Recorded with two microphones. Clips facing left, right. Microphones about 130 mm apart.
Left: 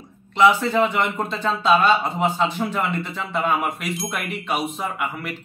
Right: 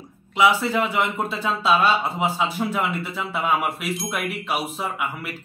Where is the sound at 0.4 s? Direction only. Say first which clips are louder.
Left 3 dB; 5° right (ahead or behind).